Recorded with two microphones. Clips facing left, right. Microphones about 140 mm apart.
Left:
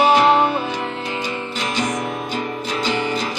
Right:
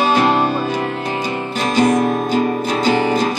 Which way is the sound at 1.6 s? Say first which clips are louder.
Right 10 dB; 50° right (ahead or behind).